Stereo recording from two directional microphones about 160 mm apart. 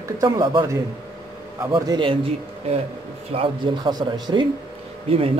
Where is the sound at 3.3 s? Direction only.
30° right (ahead or behind).